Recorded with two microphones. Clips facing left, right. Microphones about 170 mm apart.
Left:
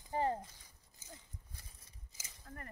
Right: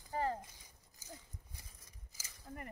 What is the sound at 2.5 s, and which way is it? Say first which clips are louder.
Speech: right 3 dB; 15° right (ahead or behind).